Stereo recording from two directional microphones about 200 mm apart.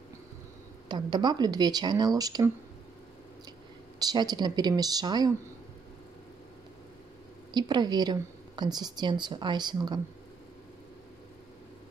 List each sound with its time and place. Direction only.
0.8 s a woman's voice: 20° right (ahead or behind)
4.0 s a woman's voice: 20° right (ahead or behind)
7.5 s a woman's voice: 20° right (ahead or behind)